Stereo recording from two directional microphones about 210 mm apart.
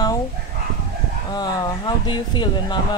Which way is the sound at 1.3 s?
20° left (ahead or behind).